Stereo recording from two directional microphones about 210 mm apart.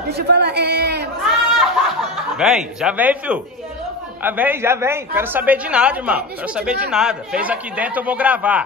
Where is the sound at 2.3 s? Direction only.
5° right (ahead or behind).